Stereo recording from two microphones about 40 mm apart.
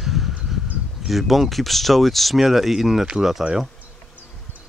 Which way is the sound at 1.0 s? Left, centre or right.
Centre.